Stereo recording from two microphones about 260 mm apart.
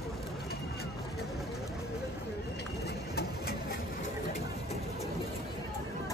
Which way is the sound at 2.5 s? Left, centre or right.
Left.